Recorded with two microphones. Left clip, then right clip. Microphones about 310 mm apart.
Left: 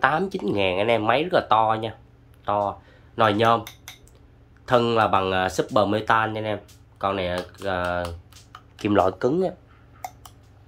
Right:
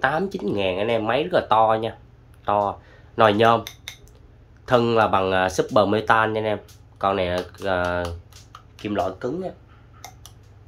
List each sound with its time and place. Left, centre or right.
0.0 s speech: centre
4.6 s speech: centre
8.8 s speech: centre